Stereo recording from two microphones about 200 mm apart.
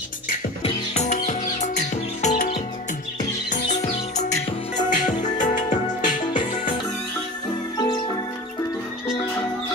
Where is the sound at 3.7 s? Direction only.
35° left (ahead or behind).